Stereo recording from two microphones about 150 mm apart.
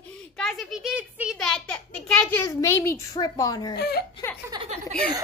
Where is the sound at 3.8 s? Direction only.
90° left.